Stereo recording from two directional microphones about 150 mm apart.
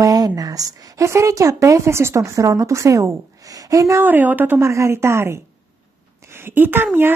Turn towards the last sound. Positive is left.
turn(degrees=-15)  # may be behind; listen again after turning